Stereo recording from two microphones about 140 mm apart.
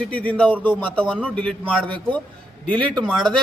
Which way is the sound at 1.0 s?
5° right (ahead or behind).